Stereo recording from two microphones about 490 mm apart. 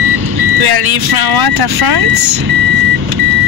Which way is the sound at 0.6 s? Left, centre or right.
Right.